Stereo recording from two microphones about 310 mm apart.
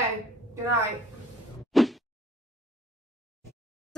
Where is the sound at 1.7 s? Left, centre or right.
Centre.